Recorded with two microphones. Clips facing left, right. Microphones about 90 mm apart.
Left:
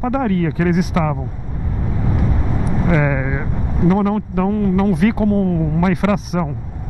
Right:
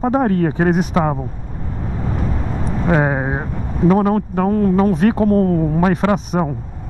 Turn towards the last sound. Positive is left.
turn(degrees=-35)  # may be behind; listen again after turning